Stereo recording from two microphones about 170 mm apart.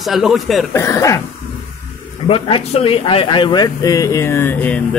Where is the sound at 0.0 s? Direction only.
Centre (ahead or behind).